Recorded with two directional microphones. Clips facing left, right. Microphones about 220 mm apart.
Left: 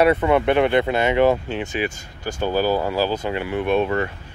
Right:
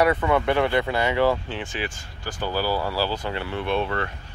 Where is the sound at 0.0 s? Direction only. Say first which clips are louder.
Left 4 dB; 25° left (ahead or behind).